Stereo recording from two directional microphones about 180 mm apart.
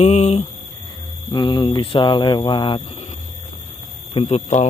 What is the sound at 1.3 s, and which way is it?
Speech, 25° left (ahead or behind).